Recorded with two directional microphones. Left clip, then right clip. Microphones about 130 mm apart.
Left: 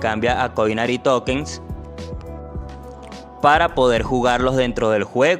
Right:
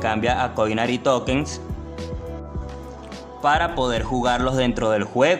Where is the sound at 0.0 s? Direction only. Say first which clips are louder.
Left 2 dB; 50° left (ahead or behind).